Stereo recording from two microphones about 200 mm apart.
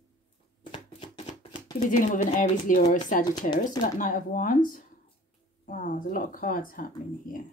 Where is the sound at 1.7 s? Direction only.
40° left (ahead or behind).